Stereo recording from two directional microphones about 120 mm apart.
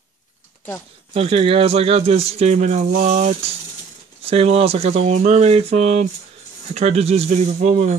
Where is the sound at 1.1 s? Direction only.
55° right (ahead or behind); by 3.4 s 75° right (ahead or behind).